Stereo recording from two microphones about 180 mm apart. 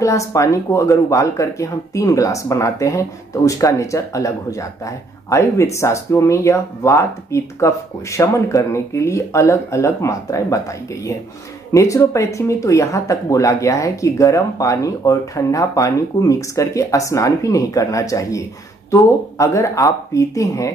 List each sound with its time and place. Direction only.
0.0 s speech: 15° left (ahead or behind)
11.7 s speech: 15° left (ahead or behind)